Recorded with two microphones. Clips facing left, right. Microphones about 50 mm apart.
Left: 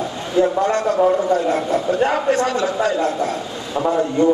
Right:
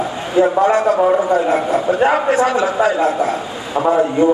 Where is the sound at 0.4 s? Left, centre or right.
Centre.